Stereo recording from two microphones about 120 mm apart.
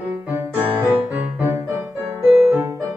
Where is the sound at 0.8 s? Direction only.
15° right (ahead or behind).